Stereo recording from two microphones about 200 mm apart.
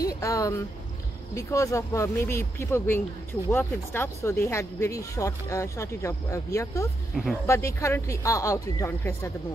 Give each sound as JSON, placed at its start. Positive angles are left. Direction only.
{"t": 0.2, "sound": "speech", "side_deg": 15}